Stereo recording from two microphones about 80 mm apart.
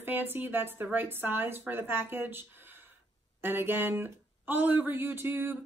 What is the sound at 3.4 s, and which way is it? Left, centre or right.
Speech, right.